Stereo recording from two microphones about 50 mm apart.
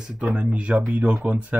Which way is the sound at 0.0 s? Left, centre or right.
Centre.